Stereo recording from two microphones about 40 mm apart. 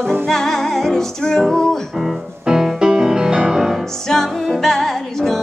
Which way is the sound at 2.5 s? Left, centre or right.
Centre.